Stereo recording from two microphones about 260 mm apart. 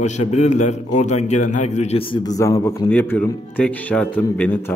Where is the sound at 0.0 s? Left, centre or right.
Left.